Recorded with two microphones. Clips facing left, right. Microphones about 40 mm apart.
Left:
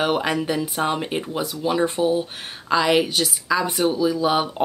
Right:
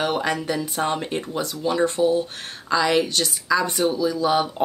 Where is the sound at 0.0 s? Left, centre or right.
Centre.